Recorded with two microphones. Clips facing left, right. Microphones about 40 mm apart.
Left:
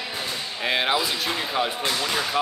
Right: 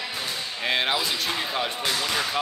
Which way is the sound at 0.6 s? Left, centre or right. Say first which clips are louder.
Left 2 dB; centre.